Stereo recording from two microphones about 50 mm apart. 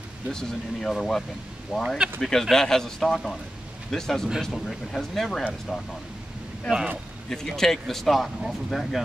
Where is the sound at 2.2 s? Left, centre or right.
Centre.